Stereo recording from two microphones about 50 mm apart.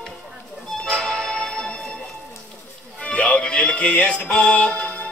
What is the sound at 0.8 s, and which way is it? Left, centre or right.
Music, centre.